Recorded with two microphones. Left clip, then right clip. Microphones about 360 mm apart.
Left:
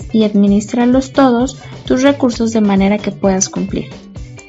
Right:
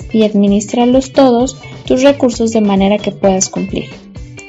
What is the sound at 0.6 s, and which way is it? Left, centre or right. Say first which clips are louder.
Speech: right 3 dB; right.